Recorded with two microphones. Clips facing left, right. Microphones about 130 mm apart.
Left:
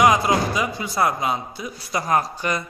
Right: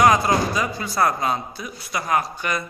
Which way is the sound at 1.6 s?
35° left (ahead or behind).